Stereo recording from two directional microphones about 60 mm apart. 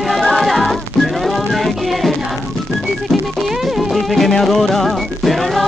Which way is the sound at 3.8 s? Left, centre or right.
Centre.